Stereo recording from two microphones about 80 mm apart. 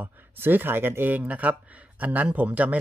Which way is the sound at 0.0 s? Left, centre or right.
Right.